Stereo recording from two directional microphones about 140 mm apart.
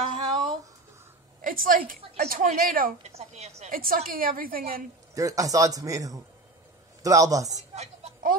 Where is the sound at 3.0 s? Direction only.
50° right (ahead or behind).